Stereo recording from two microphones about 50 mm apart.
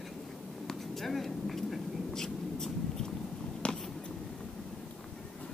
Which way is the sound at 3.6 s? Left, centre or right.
Left.